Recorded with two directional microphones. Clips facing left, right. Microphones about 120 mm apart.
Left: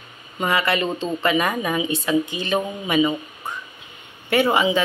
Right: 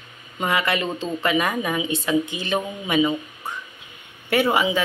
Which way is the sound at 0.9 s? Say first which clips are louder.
Left 2 dB; 15° left (ahead or behind).